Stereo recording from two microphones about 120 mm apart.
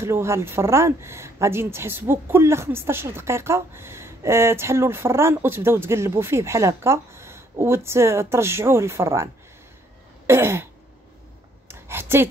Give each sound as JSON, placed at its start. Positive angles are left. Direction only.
{"t": 0.0, "sound": "speech", "side_deg": -20}
{"t": 10.2, "sound": "throat clearing", "side_deg": -20}
{"t": 11.6, "sound": "a sound", "side_deg": -20}